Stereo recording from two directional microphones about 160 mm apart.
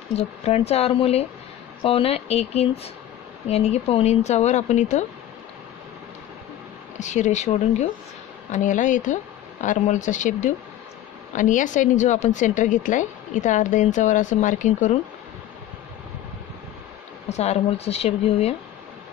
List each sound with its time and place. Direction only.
0.1 s a woman's voice: 40° left (ahead or behind)
7.0 s a woman's voice: 50° left (ahead or behind)
17.3 s speech: 40° left (ahead or behind)